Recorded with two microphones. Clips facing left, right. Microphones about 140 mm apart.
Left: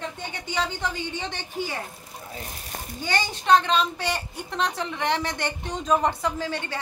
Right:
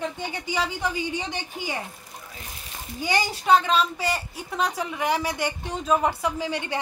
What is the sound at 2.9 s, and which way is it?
A woman's voice, 10° right (ahead or behind).